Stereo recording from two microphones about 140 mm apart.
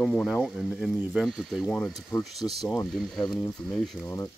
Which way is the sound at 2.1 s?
25° left (ahead or behind).